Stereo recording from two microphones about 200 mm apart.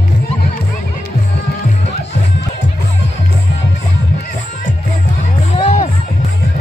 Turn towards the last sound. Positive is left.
turn(degrees=30)  # may be behind; listen again after turning